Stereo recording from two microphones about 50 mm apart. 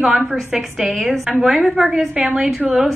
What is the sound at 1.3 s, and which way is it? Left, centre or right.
A woman's voice, centre.